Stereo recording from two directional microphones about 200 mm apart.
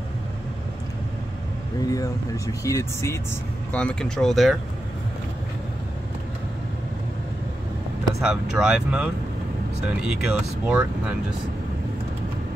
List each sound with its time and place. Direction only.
1.9 s speech: 15° left (ahead or behind); by 4.6 s centre (ahead or behind)
8.1 s speech: 5° right (ahead or behind)